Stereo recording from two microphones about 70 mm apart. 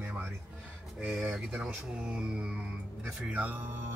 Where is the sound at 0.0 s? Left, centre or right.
Right.